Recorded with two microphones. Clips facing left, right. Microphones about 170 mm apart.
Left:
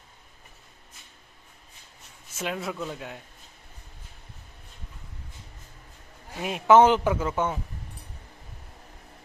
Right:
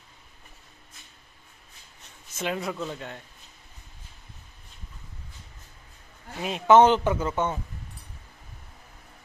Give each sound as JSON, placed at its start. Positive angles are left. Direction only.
{"t": 2.3, "sound": "speech", "side_deg": 0}
{"t": 6.4, "sound": "a man's voice", "side_deg": 5}